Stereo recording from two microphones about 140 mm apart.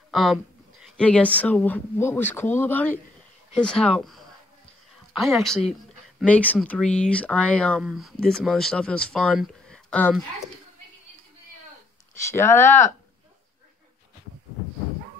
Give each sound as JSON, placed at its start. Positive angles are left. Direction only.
{"t": 0.1, "sound": "a sound", "side_deg": 0}
{"t": 1.0, "sound": "speech", "side_deg": 10}
{"t": 9.3, "sound": "speech", "side_deg": -5}
{"t": 9.8, "sound": "speech", "side_deg": 10}
{"t": 12.2, "sound": "speech", "side_deg": 20}